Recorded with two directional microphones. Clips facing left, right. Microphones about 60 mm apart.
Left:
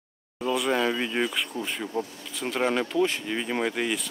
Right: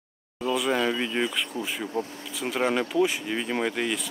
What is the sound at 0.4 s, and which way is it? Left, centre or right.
Speech, centre.